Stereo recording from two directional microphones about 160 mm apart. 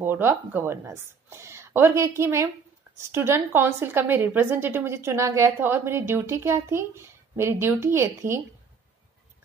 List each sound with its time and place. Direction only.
0.0 s a woman's voice: 15° right (ahead or behind)